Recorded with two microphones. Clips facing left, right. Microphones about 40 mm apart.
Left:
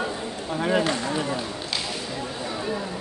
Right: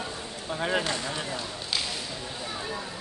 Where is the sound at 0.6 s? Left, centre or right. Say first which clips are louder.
Left 5 dB; centre.